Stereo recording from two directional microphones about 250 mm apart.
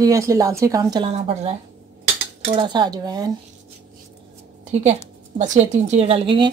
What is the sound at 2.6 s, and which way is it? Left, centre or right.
Speech, centre.